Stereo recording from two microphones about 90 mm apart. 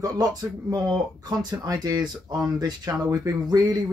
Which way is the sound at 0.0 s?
45° right (ahead or behind).